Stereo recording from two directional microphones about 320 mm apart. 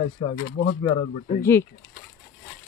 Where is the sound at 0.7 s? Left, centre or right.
Centre.